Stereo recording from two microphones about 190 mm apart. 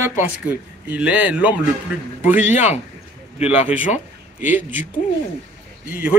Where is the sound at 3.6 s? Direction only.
5° right (ahead or behind).